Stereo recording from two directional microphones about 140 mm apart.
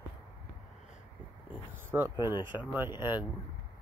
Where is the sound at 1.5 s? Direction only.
15° right (ahead or behind).